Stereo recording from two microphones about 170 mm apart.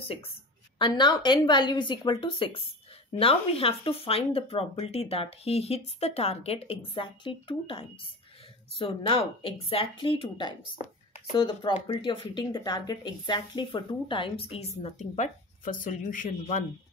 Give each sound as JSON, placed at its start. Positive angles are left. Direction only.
{"t": 0.7, "sound": "speech", "side_deg": 25}